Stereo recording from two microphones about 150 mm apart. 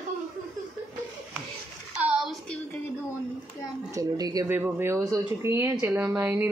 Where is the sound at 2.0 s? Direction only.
5° right (ahead or behind).